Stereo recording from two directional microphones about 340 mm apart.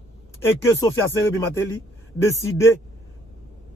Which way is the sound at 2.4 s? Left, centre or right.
Centre.